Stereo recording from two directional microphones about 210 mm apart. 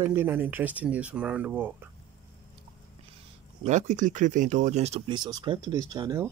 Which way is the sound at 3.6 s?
35° right (ahead or behind).